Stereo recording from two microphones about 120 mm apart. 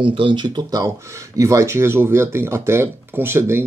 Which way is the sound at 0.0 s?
45° right (ahead or behind).